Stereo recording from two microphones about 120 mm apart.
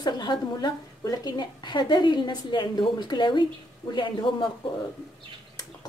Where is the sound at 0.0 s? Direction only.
35° left (ahead or behind).